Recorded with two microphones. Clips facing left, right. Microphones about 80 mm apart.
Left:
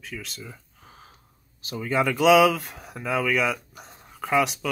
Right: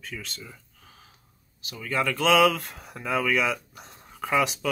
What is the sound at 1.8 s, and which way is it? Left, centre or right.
Speech, centre.